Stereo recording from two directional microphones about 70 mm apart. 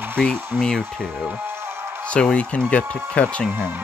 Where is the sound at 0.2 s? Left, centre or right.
Centre.